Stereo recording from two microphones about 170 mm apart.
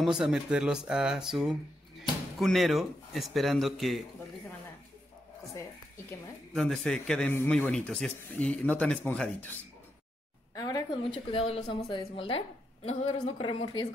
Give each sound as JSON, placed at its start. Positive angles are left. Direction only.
{"t": 0.0, "sound": "speech", "side_deg": 0}
{"t": 6.5, "sound": "speech", "side_deg": 0}
{"t": 10.5, "sound": "a woman's voice", "side_deg": 25}